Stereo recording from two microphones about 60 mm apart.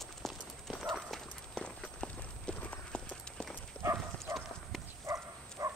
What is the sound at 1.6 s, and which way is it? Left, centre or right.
Clip-clop, centre.